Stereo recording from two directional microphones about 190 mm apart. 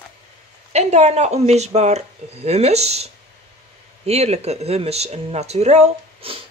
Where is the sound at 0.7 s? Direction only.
35° right (ahead or behind).